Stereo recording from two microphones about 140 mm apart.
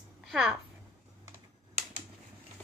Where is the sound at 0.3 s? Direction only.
5° right (ahead or behind).